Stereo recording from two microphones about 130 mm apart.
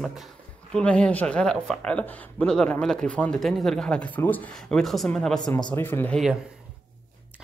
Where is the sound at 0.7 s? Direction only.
5° left (ahead or behind).